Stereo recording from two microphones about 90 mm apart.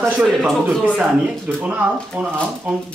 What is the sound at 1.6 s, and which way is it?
Speech, 15° right (ahead or behind).